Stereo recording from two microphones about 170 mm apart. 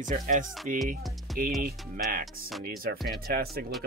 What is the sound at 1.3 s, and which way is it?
Music, centre (ahead or behind).